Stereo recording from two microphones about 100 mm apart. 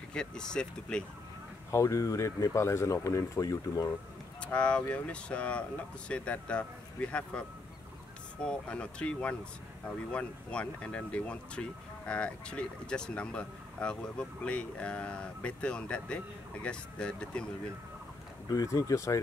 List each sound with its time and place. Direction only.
0.1 s speech: 10° left (ahead or behind)
1.7 s speech: 30° left (ahead or behind)
4.4 s speech: 10° left (ahead or behind)
18.5 s speech: 35° left (ahead or behind)